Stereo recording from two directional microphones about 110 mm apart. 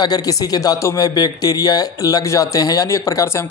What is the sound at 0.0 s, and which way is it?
Speech, 35° left (ahead or behind).